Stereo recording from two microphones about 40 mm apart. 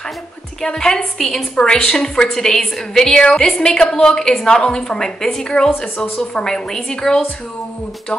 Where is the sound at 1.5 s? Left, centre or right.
Centre.